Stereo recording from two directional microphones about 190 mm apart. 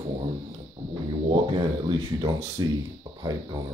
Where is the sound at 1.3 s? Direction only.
25° right (ahead or behind).